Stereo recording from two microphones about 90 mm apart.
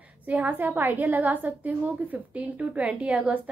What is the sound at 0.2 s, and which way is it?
A woman's voice, 15° right (ahead or behind).